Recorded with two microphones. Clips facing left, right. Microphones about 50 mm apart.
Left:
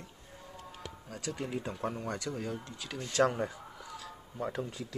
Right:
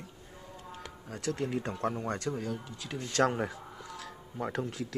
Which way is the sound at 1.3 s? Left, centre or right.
Centre.